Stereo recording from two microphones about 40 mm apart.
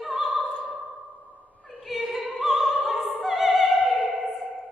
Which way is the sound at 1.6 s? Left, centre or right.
Centre.